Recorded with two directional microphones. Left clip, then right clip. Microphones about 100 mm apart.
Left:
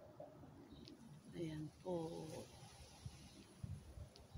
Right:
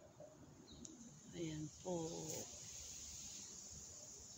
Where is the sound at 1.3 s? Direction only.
30° right (ahead or behind).